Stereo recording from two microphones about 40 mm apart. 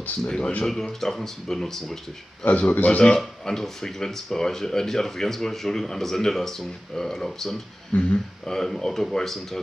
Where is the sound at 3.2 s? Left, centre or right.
Centre.